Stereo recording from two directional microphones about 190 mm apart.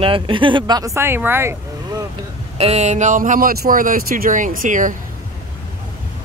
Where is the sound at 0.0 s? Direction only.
25° right (ahead or behind).